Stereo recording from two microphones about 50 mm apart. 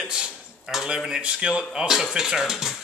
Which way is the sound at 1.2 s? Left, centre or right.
Right.